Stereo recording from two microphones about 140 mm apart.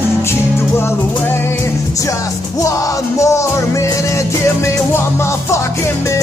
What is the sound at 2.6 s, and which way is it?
Music, 20° left (ahead or behind).